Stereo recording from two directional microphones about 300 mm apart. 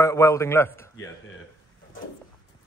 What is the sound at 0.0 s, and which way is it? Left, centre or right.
A man's voice, centre.